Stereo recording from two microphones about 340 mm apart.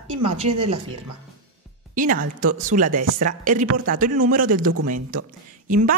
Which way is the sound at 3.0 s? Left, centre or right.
Right.